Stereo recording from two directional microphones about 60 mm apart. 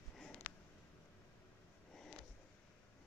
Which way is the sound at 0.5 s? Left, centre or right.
Left.